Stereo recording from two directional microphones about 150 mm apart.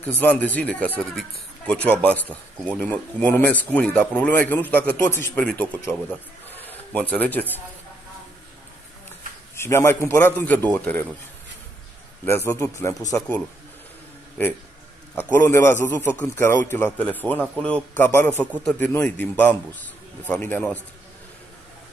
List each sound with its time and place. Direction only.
0.2 s speech: 10° left (ahead or behind)
6.5 s a sound: 10° left (ahead or behind)
9.6 s speech: 15° left (ahead or behind)
12.3 s speech: 15° left (ahead or behind)
15.1 s speech: 15° left (ahead or behind)